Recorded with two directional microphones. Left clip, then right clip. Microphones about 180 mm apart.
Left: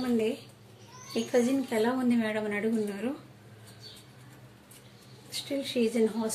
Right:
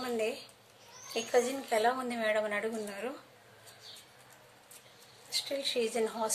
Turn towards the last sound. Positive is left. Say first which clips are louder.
# left 4 dB
turn(degrees=-20)  # may be behind; listen again after turning